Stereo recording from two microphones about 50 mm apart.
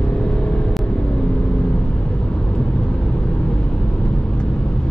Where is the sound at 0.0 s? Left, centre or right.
Centre.